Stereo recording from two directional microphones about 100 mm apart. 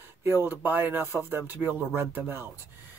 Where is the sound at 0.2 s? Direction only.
25° right (ahead or behind).